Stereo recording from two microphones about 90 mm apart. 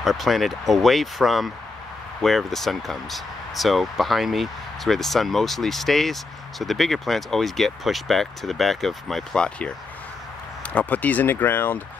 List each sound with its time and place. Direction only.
0.0 s speech: centre (ahead or behind); by 11.8 s 20° left (ahead or behind)